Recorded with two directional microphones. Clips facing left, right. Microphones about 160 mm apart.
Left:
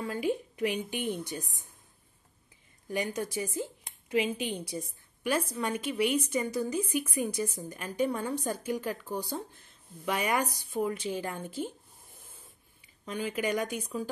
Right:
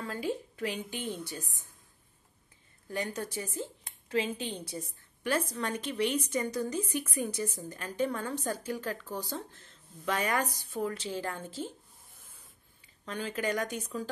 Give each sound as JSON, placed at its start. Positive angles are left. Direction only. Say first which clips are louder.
{"t": 0.0, "sound": "a woman's voice", "louder": "left 3 dB", "side_deg": 15}
{"t": 2.9, "sound": "a woman's voice", "louder": "left 3 dB", "side_deg": 15}
{"t": 12.8, "sound": "speech", "louder": "left 3 dB", "side_deg": 15}